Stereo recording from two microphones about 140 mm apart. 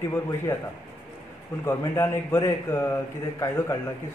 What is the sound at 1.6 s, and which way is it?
A man's voice, 15° left (ahead or behind).